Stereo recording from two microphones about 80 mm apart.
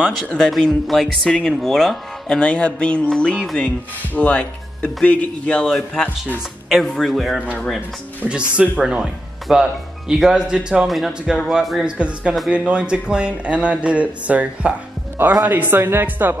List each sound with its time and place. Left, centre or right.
0.1 s speech: centre
6.0 s speech: left
6.7 s speech: centre
8.3 s a man's voice: centre